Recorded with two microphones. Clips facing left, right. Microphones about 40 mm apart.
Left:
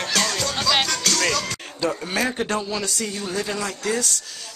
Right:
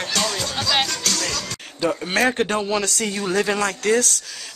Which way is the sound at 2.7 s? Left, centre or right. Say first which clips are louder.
Right 4 dB; right.